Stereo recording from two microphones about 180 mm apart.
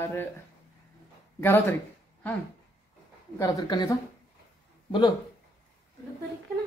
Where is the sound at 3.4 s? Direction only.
20° left (ahead or behind).